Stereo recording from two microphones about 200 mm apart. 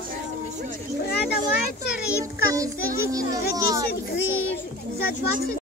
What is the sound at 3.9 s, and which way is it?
Speech, 55° left (ahead or behind).